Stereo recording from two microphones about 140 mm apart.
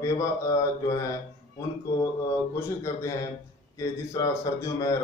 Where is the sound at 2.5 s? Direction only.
20° left (ahead or behind).